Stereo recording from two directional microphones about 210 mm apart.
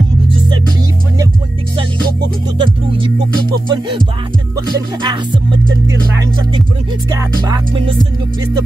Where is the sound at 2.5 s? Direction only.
25° right (ahead or behind).